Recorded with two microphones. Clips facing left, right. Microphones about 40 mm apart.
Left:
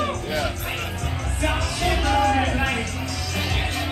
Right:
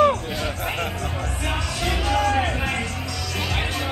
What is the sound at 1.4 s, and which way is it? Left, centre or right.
Music, centre.